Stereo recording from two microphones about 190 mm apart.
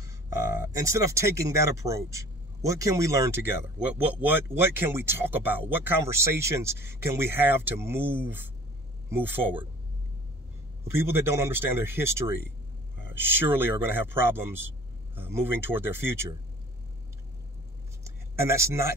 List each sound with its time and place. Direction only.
0.9 s speech: 15° right (ahead or behind)
10.9 s speech: 15° right (ahead or behind)
18.0 s a sound: 15° right (ahead or behind)